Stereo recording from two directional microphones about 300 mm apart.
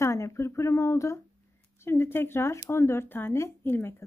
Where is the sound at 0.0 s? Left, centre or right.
Centre.